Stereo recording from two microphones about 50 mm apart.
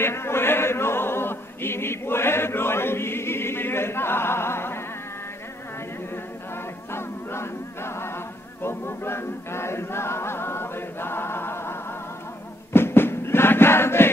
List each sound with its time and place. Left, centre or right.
0.0 s choir: left
6.5 s a capella: left
12.7 s music: left